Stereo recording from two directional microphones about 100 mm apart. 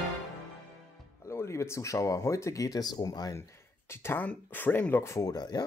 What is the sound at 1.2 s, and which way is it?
Speech, 30° left (ahead or behind).